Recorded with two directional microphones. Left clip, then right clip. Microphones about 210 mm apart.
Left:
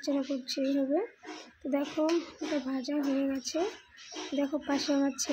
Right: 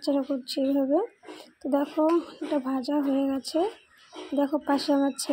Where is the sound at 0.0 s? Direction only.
15° right (ahead or behind).